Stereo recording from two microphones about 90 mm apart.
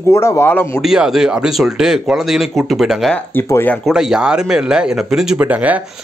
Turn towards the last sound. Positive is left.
turn(degrees=-15)  # may be behind; listen again after turning